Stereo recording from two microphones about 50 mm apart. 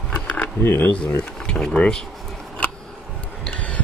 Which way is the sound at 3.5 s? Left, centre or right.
Left.